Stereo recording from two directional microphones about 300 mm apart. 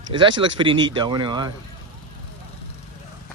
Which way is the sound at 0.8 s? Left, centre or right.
Centre.